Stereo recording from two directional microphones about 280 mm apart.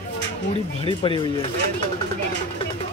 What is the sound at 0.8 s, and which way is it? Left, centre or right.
Speech, centre.